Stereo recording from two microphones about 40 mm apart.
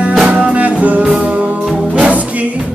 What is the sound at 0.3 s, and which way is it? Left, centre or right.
Music, right.